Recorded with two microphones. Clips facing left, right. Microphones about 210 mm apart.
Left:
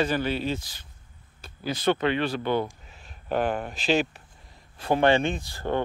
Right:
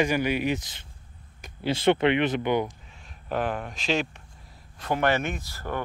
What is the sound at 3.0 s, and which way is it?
Speech, centre (ahead or behind).